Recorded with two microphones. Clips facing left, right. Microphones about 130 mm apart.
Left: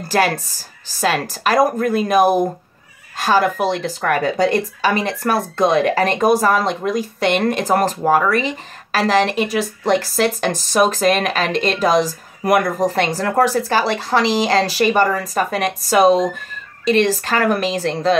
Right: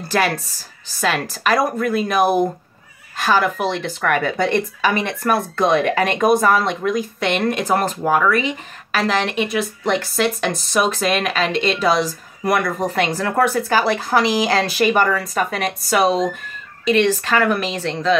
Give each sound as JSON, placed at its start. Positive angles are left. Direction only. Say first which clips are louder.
{"t": 0.1, "sound": "a woman's voice", "louder": "left 2 dB", "side_deg": 40}